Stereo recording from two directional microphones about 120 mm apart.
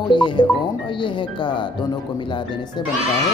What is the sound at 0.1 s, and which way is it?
Speech, 40° left (ahead or behind).